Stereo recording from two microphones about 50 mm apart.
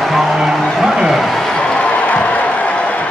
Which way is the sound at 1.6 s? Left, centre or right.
Left.